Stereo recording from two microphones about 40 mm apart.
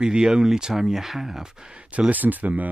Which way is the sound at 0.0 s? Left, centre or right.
Centre.